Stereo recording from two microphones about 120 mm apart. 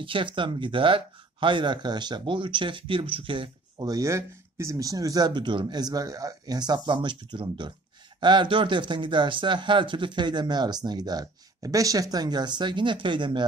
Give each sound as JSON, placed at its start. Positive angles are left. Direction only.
{"t": 0.0, "sound": "speech", "side_deg": -45}